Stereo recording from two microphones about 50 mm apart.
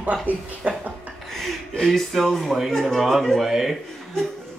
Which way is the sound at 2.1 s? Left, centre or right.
Centre.